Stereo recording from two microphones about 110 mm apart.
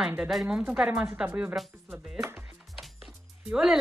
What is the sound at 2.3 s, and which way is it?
Music, centre (ahead or behind).